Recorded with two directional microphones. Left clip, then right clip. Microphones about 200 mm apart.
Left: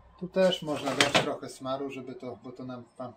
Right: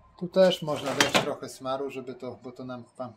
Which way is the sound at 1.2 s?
45° right (ahead or behind).